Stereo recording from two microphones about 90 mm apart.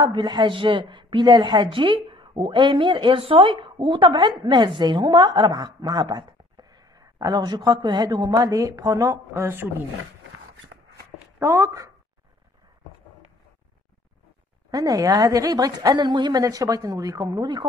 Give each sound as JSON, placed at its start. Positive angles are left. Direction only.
{"t": 0.0, "sound": "a woman's voice", "side_deg": -60}
{"t": 1.7, "sound": "a woman's voice", "side_deg": -70}
{"t": 11.3, "sound": "speech", "side_deg": -30}
{"t": 14.7, "sound": "a woman's voice", "side_deg": -45}